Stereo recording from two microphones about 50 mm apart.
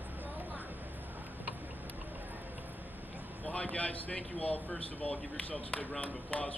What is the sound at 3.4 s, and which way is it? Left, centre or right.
Speech, left.